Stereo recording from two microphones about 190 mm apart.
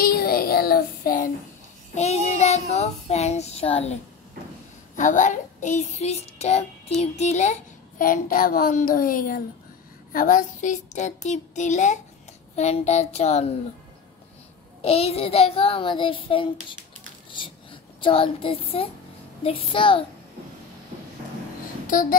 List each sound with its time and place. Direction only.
0.0 s child singing: 50° left (ahead or behind)
2.0 s child singing: 35° left (ahead or behind)
4.9 s child singing: 40° left (ahead or behind)
8.0 s a child's voice: 45° left (ahead or behind)
10.1 s child singing: 45° left (ahead or behind)
14.8 s child singing: 30° left (ahead or behind)
17.3 s a child's voice: 25° left (ahead or behind)